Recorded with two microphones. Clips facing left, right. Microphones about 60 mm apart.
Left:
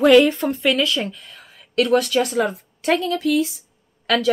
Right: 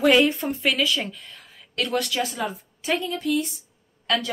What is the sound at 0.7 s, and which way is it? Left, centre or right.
Speech, centre.